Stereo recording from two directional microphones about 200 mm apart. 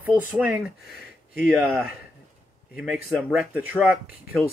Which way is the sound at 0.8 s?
50° left (ahead or behind).